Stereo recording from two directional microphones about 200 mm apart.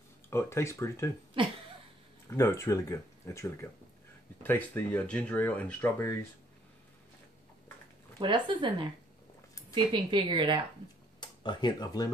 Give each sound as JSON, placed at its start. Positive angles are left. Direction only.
{"t": 0.3, "sound": "speech", "side_deg": 15}
{"t": 1.4, "sound": "a woman's voice", "side_deg": -25}
{"t": 2.2, "sound": "speech", "side_deg": 15}
{"t": 8.2, "sound": "a woman's voice", "side_deg": -25}
{"t": 9.9, "sound": "a woman's voice", "side_deg": -25}
{"t": 11.1, "sound": "speech", "side_deg": 20}